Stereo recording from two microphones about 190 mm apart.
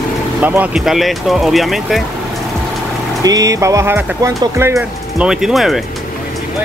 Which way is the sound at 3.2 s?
20° right (ahead or behind).